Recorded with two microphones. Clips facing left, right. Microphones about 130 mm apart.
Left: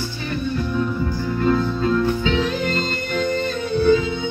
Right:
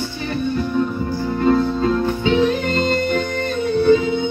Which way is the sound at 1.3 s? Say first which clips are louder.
Right 4 dB; 35° right (ahead or behind).